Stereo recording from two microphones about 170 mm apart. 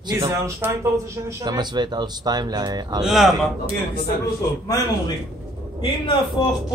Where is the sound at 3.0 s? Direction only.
Centre (ahead or behind).